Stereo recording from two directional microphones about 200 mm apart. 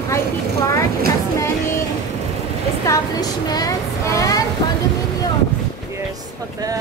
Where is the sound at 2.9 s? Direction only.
20° left (ahead or behind).